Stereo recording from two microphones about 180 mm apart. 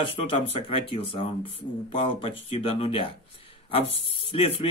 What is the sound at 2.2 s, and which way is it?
Speech, 30° left (ahead or behind).